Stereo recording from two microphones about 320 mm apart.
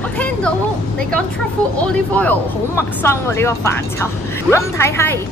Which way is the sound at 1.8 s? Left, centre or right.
Centre.